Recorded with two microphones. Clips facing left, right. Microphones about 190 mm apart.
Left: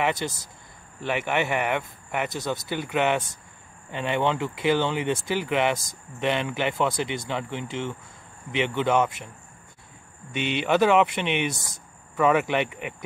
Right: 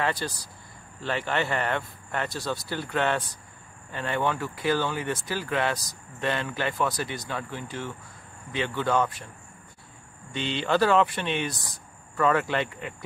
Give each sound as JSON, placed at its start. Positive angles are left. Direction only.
{"t": 0.0, "sound": "speech", "side_deg": 20}
{"t": 10.3, "sound": "speech", "side_deg": 20}